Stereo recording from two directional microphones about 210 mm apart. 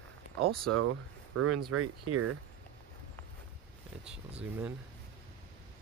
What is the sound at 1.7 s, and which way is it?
Speech, 90° right.